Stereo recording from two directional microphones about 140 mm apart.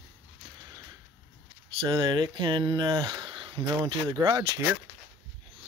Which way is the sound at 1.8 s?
35° right (ahead or behind).